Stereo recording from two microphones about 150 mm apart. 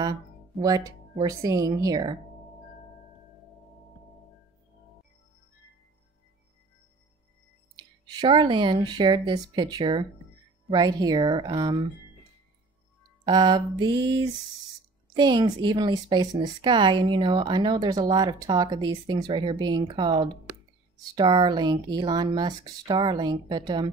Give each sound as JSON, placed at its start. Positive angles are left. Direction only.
{"t": 0.0, "sound": "speech", "side_deg": -25}
{"t": 7.7, "sound": "speech", "side_deg": -30}
{"t": 13.2, "sound": "speech", "side_deg": -30}